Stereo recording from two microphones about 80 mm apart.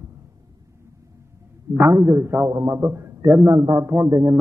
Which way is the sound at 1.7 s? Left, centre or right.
Right.